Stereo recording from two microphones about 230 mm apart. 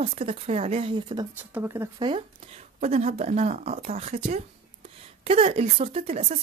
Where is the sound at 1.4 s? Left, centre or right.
Centre.